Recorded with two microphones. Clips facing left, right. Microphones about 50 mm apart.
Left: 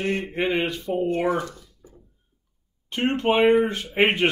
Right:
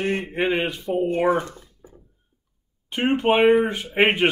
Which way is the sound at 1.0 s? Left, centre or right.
Right.